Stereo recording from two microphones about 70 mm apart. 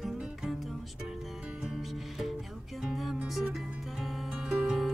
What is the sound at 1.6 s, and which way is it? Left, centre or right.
Music, centre.